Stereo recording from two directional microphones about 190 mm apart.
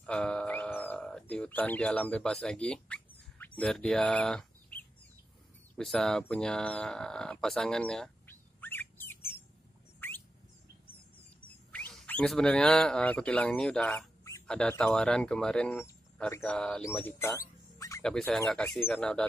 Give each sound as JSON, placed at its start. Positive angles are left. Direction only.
{"t": 0.0, "sound": "a sound", "side_deg": 5}
{"t": 5.8, "sound": "speech", "side_deg": 5}
{"t": 9.9, "sound": "a sound", "side_deg": 10}
{"t": 14.5, "sound": "speech", "side_deg": 5}
{"t": 17.4, "sound": "music", "side_deg": 15}
{"t": 18.0, "sound": "speech", "side_deg": 5}